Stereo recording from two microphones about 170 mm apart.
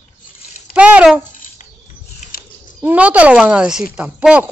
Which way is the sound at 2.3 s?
60° left (ahead or behind).